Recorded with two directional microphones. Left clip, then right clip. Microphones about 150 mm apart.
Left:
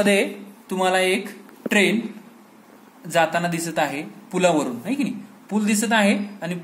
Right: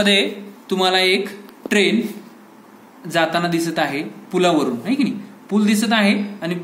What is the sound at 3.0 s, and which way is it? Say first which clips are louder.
A man's voice: right 2 dB; 35° left (ahead or behind).